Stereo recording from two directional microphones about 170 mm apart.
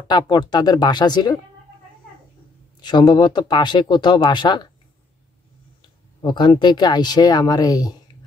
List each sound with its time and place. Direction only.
0.1 s speech: 25° left (ahead or behind)
2.8 s speech: 25° left (ahead or behind)
6.2 s speech: 25° left (ahead or behind)